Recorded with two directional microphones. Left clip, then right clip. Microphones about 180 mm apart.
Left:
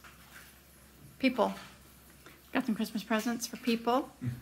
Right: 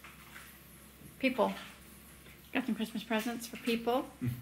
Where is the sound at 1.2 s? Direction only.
10° left (ahead or behind).